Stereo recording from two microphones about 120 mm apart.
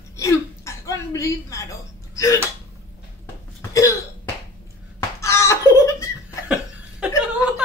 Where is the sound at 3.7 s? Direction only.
25° left (ahead or behind).